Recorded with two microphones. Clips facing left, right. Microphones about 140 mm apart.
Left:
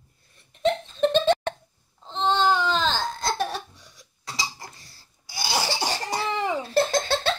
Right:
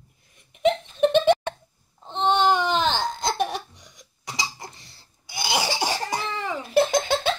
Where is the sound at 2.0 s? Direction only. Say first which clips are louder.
Right 2 dB; 15° right (ahead or behind).